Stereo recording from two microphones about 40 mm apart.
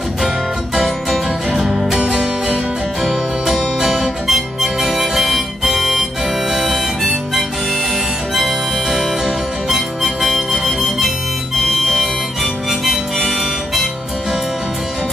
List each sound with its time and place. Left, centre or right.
1.5 s music: centre
3.0 s music: centre
6.5 s harmonica: centre
8.4 s harmonica: centre
10.2 s music: centre
12.8 s harmonica: centre